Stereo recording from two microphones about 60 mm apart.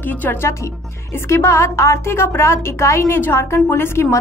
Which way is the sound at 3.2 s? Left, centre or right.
Left.